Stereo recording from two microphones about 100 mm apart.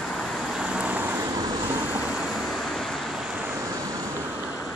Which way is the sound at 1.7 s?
20° right (ahead or behind).